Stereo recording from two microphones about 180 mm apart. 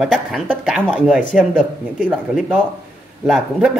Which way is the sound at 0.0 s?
Centre (ahead or behind).